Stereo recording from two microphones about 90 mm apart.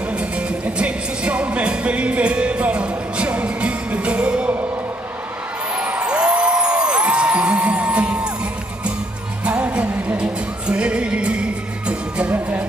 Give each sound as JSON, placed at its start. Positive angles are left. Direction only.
{"t": 0.1, "sound": "music", "side_deg": -10}
{"t": 5.8, "sound": "music", "side_deg": -20}
{"t": 9.4, "sound": "music", "side_deg": -15}